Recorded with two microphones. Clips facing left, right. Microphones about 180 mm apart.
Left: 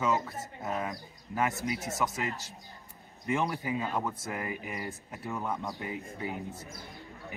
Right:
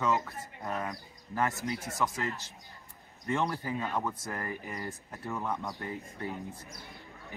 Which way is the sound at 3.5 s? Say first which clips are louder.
Left 1 dB; 15° left (ahead or behind).